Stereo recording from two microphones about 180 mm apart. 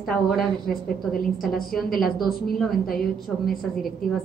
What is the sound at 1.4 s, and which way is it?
A woman's voice, centre (ahead or behind).